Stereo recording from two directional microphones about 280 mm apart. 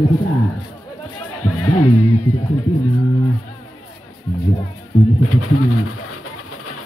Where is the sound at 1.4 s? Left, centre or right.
Left.